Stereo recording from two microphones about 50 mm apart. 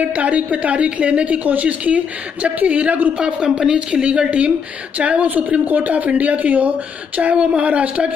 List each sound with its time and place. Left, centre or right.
0.0 s speech: right
3.2 s a woman's voice: centre